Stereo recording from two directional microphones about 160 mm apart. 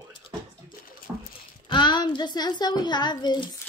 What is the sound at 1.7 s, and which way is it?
Speech, 30° left (ahead or behind).